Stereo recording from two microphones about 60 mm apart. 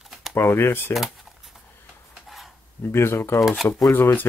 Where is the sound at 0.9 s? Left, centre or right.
Centre.